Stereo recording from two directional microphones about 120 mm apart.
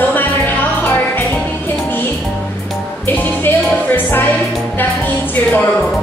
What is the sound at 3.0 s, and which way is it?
Music, 15° left (ahead or behind).